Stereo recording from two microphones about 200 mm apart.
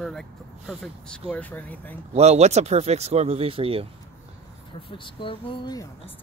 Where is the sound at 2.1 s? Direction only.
35° right (ahead or behind).